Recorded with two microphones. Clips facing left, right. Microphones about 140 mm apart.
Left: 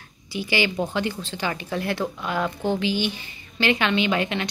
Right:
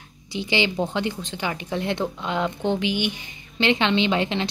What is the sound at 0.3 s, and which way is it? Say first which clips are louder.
A woman's voice: right 1 dB; 20° right (ahead or behind).